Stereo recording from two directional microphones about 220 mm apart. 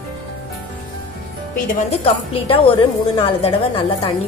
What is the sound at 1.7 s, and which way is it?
A woman's voice, 30° left (ahead or behind).